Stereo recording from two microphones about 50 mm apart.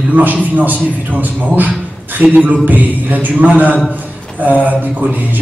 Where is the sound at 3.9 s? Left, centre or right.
Right.